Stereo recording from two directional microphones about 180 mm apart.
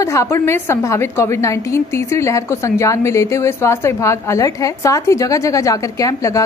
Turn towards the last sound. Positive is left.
turn(degrees=20)  # may be behind; listen again after turning